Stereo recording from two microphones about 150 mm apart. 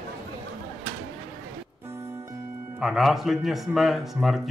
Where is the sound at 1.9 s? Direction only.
15° right (ahead or behind).